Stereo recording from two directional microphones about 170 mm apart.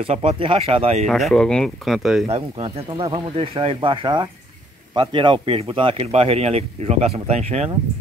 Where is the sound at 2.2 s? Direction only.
35° right (ahead or behind).